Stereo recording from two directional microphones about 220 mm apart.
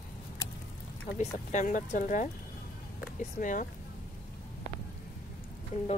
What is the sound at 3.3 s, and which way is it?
Speech, 35° left (ahead or behind).